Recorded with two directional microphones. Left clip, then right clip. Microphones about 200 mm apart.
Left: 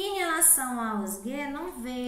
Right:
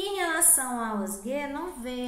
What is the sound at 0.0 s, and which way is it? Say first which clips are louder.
A woman's voice: even; 10° left (ahead or behind).